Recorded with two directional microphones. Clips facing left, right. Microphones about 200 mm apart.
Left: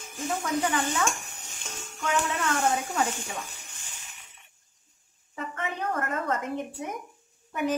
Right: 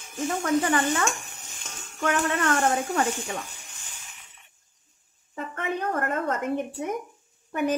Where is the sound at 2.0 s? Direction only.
60° right (ahead or behind).